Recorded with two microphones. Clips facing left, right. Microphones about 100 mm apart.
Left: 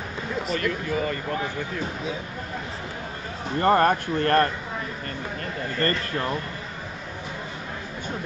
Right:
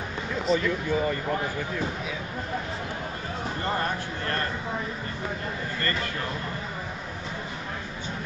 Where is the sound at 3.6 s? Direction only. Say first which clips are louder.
Left 11 dB; 55° left (ahead or behind).